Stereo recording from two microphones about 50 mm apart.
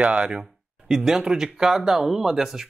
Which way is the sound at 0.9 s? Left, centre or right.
Centre.